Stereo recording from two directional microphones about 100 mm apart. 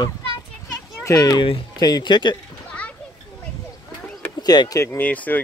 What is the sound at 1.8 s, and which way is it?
Fowl, 45° left (ahead or behind).